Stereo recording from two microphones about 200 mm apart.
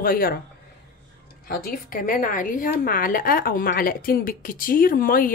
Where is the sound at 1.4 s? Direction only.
45° left (ahead or behind).